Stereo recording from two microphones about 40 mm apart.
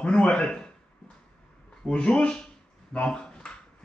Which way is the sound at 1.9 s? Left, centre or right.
Left.